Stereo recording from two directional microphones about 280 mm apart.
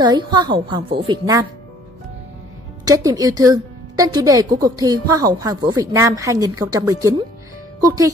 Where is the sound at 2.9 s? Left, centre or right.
Centre.